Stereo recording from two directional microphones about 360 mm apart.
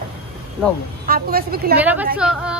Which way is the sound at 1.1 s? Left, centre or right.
Right.